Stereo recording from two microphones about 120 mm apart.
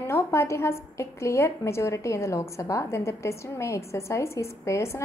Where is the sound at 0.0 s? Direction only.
20° left (ahead or behind).